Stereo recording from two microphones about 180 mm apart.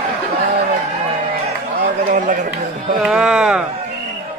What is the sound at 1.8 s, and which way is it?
Chatter, 45° right (ahead or behind).